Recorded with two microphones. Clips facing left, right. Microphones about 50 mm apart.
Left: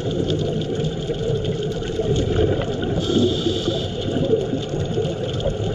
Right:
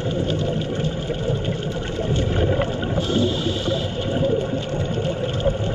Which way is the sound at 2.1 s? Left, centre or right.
Right.